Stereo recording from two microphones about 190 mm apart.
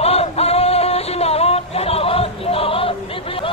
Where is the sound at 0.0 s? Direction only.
30° left (ahead or behind).